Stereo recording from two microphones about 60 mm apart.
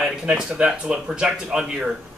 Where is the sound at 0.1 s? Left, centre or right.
Centre.